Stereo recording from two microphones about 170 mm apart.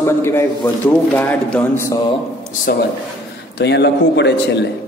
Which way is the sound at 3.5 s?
85° left.